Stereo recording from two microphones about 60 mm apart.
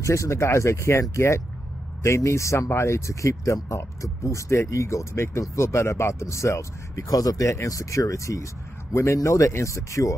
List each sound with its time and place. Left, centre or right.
0.0 s speech: left
7.1 s speech: left
7.5 s speech: left